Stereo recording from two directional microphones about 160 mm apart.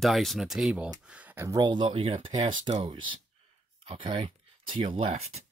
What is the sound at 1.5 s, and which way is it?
Speech, 25° right (ahead or behind).